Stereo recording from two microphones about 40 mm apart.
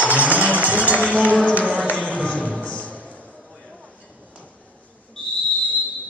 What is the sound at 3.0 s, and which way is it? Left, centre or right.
Basketball bounce, left.